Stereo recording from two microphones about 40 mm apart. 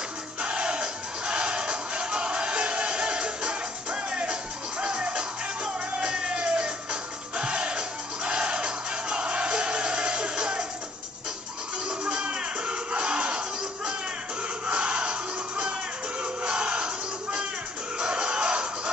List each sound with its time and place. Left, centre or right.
0.4 s battle cry: right
5.9 s music: right
12.0 s music: right
14.7 s music: right